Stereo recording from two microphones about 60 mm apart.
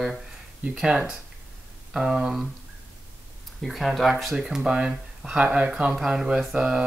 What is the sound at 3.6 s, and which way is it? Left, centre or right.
Speech, centre.